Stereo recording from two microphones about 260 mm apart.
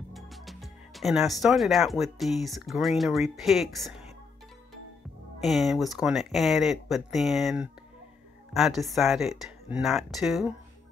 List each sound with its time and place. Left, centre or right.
0.1 s speech: centre
5.4 s speech: centre